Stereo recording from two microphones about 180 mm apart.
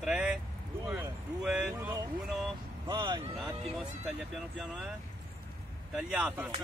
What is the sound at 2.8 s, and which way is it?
Speech, 25° right (ahead or behind).